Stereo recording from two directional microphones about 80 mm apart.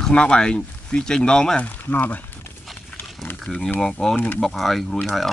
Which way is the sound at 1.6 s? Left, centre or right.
Left.